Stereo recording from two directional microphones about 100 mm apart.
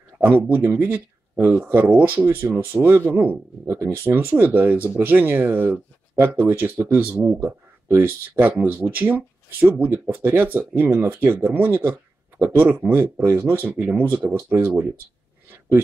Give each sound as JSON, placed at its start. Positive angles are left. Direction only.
{"t": 0.2, "sound": "speech", "side_deg": -20}